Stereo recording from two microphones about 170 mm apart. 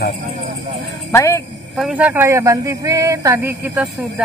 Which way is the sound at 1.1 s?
15° left (ahead or behind).